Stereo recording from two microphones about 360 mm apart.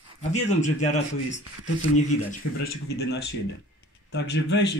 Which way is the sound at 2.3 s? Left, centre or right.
Left.